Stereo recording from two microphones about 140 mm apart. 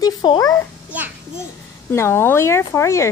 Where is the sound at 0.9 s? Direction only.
10° right (ahead or behind).